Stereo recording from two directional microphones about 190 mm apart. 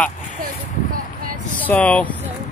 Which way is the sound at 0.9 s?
45° right (ahead or behind).